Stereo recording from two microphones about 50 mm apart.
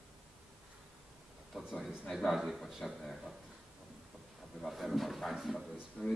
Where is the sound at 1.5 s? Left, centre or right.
Centre.